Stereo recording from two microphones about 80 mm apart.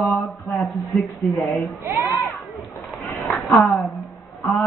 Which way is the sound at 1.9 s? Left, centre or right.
Right.